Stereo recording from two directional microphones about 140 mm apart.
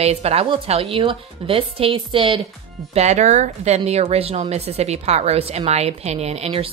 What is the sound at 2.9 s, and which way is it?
A woman's voice, 55° right (ahead or behind).